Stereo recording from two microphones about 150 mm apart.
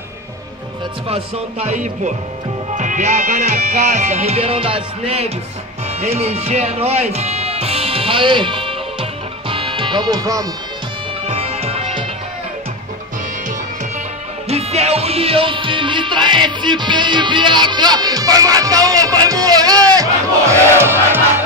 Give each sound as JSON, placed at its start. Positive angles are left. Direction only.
{"t": 1.0, "sound": "music", "side_deg": -45}
{"t": 5.9, "sound": "speech", "side_deg": -45}
{"t": 9.5, "sound": "music", "side_deg": -35}
{"t": 11.2, "sound": "music", "side_deg": -40}
{"t": 14.5, "sound": "music", "side_deg": -45}